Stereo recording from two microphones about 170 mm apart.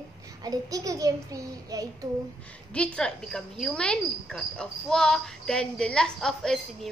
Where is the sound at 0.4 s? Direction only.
20° right (ahead or behind).